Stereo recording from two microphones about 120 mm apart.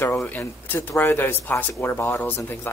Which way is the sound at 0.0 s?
20° left (ahead or behind).